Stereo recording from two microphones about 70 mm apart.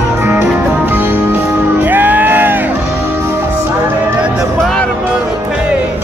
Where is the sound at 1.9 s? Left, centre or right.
Right.